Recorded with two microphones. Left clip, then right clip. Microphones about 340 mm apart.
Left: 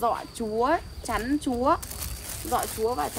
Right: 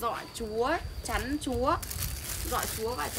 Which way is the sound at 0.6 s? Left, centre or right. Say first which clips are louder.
Left 5 dB; centre.